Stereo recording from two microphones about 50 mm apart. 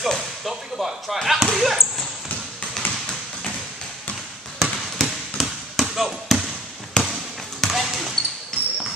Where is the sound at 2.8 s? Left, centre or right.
Left.